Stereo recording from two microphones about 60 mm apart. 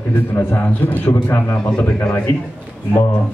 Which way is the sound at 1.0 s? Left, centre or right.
Left.